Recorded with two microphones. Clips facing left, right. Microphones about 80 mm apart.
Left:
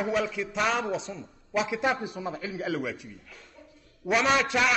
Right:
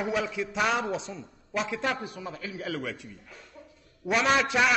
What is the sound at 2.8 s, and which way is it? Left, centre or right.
Speech, centre.